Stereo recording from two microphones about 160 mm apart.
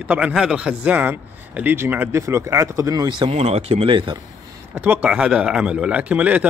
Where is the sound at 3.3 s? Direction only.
40° right (ahead or behind).